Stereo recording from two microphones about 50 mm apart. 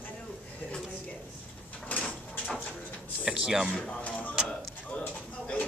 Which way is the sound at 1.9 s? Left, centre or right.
Left.